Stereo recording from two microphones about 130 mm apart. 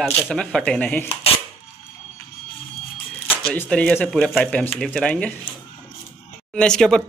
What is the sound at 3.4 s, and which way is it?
Speech, 10° left (ahead or behind).